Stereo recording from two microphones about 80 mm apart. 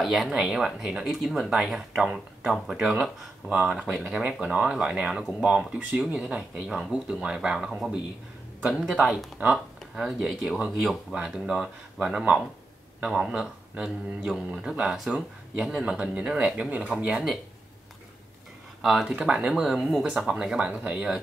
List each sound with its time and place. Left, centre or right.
0.0 s speech: centre
3.4 s speech: centre
10.0 s speech: centre
18.8 s speech: centre